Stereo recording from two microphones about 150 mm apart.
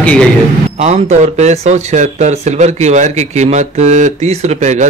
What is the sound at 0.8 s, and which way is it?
Speech, 50° right (ahead or behind).